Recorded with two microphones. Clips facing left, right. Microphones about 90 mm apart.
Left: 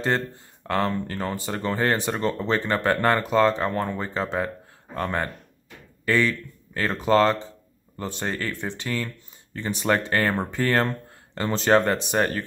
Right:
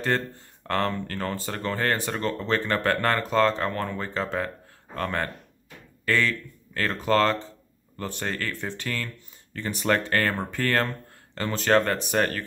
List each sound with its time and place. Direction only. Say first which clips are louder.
0.7 s speech: left 2 dB; 10° left (ahead or behind)